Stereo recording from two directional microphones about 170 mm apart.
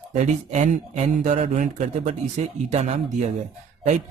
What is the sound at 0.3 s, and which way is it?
Speech, 45° right (ahead or behind).